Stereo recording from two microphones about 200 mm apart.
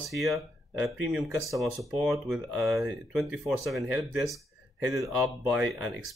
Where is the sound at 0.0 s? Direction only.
Centre (ahead or behind).